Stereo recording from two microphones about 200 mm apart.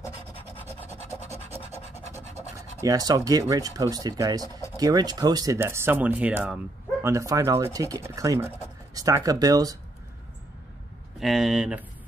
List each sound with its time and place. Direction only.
0.6 s rub: 10° left (ahead or behind)
2.8 s speech: 20° right (ahead or behind)
11.1 s speech: centre (ahead or behind)